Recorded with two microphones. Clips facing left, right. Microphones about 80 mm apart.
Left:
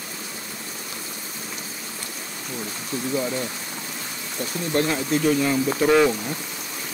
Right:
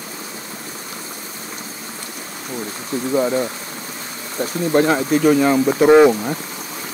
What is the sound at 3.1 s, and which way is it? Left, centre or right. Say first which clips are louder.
Speech: right 9 dB; right.